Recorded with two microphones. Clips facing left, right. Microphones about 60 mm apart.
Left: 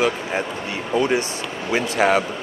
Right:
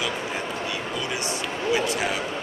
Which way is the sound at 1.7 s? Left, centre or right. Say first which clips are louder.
Left 12 dB; left.